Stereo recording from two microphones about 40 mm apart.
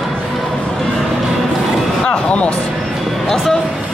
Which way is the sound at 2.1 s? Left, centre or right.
Left.